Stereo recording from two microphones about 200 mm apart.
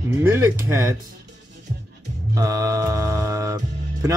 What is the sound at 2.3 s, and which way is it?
Music, 15° right (ahead or behind).